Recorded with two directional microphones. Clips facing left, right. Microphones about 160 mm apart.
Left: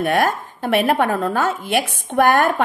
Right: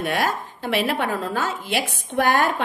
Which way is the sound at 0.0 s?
50° left (ahead or behind).